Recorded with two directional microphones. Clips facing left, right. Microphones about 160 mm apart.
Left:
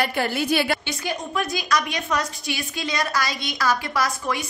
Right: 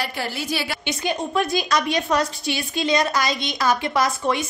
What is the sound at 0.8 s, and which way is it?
A woman's voice, 25° right (ahead or behind).